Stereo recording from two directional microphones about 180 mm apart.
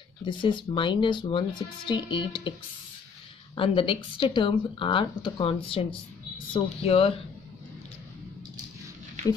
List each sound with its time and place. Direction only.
0.2 s speech: 25° left (ahead or behind)
3.5 s speech: 30° left (ahead or behind)